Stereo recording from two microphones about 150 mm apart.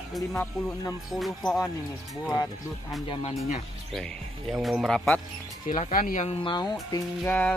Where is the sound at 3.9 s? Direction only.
Centre (ahead or behind).